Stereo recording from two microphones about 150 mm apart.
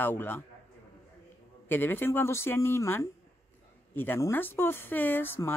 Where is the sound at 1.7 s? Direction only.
15° left (ahead or behind).